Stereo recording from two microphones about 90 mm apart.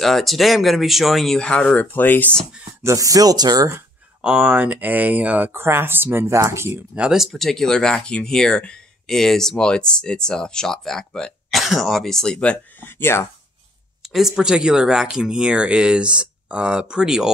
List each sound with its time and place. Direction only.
0.0 s speech: centre (ahead or behind); by 2.3 s 20° left (ahead or behind)
2.8 s speech: 35° right (ahead or behind)
4.2 s speech: 10° right (ahead or behind); by 6.7 s 30° right (ahead or behind)
6.7 s speech: 10° right (ahead or behind); by 12.5 s 10° left (ahead or behind)
12.8 s speech: 25° left (ahead or behind)
14.1 s speech: 5° right (ahead or behind)